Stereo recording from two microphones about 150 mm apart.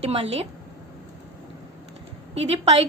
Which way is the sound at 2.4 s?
45° right (ahead or behind).